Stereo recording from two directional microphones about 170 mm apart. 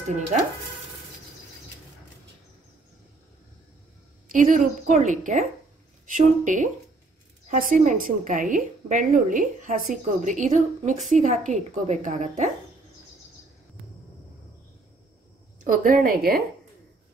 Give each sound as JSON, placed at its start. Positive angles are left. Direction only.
{"t": 4.3, "sound": "a woman's voice", "side_deg": -50}
{"t": 15.6, "sound": "a woman's voice", "side_deg": -55}